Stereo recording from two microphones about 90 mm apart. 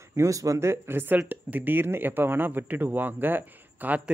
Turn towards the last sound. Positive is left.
turn(degrees=-15)  # may be behind; listen again after turning